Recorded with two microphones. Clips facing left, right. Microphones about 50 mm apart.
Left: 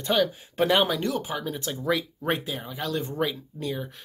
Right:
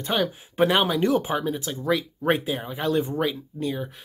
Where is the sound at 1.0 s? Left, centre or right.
Right.